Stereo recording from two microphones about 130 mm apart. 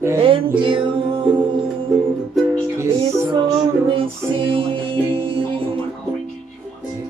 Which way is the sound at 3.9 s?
45° right (ahead or behind).